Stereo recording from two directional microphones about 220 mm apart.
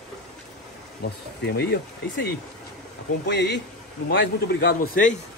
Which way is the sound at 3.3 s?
50° left (ahead or behind).